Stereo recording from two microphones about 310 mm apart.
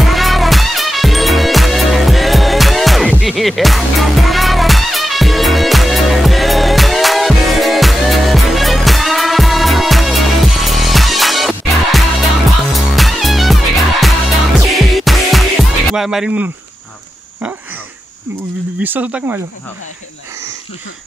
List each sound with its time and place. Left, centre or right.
0.0 s music: centre
18.8 s speech: centre